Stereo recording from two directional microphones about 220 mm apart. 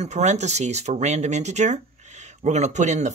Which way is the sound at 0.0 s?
30° right (ahead or behind).